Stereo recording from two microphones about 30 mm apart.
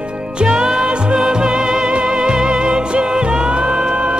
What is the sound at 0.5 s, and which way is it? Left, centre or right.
Music, right.